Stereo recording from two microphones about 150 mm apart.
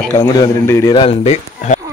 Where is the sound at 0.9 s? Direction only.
40° left (ahead or behind).